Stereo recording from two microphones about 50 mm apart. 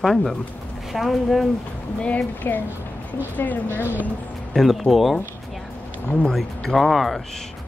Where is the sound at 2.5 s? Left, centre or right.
Left.